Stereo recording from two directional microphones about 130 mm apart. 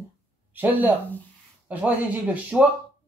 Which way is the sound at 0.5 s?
15° right (ahead or behind).